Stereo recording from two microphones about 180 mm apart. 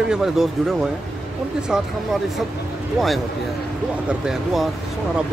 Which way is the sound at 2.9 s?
Centre (ahead or behind).